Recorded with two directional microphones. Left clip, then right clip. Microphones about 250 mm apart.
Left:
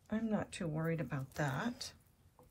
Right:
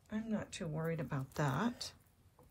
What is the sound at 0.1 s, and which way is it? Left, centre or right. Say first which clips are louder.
Speech: left 3 dB; centre.